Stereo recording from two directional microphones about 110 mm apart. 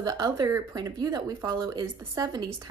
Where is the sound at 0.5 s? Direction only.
25° right (ahead or behind).